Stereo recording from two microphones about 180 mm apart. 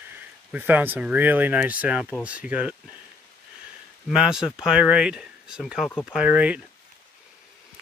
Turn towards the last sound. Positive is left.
turn(degrees=-5)  # may be behind; listen again after turning